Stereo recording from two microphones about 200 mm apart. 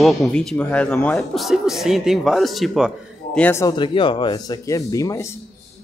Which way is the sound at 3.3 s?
10° left (ahead or behind).